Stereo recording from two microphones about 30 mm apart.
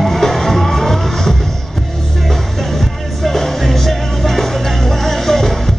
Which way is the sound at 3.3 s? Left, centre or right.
Centre.